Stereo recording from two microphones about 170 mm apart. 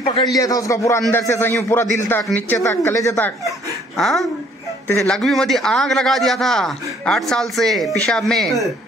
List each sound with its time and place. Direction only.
0.4 s a man's voice: 20° left (ahead or behind)
4.0 s a man's voice: centre (ahead or behind)